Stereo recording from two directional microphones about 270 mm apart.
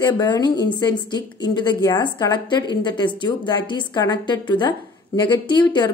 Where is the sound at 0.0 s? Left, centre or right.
Centre.